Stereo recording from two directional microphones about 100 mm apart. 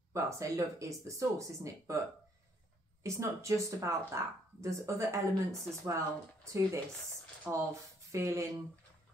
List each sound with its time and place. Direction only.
0.1 s speech: 30° right (ahead or behind)
3.0 s speech: 30° right (ahead or behind)
7.5 s speech: 5° right (ahead or behind)
8.1 s speech: 30° right (ahead or behind)